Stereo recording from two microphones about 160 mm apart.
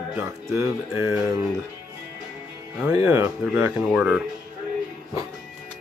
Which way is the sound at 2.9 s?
20° right (ahead or behind).